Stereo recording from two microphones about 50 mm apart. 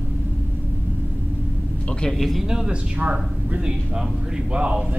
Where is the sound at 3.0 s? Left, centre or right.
Right.